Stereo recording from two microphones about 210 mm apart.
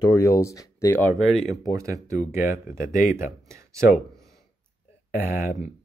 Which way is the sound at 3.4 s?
15° right (ahead or behind).